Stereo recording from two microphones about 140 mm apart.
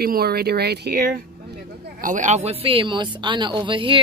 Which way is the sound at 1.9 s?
70° right (ahead or behind).